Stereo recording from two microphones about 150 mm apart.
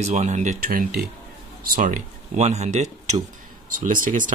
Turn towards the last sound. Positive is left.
turn(degrees=-60)  # may be behind; listen again after turning